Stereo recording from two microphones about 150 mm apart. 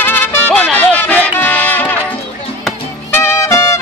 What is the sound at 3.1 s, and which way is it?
Music, 15° left (ahead or behind).